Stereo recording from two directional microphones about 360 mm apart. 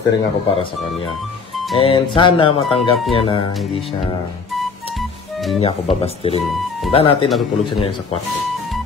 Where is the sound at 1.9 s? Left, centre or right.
Centre.